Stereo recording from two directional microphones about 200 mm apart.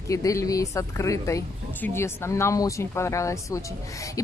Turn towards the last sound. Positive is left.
turn(degrees=15)  # may be behind; listen again after turning